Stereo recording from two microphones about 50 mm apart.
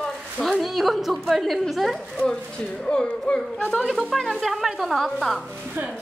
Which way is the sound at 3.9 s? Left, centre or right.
Centre.